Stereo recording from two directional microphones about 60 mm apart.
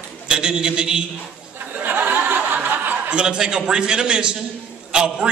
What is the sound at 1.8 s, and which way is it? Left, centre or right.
Chuckle, right.